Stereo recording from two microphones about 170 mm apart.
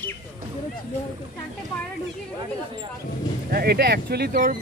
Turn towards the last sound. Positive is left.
turn(degrees=-55)  # may be behind; listen again after turning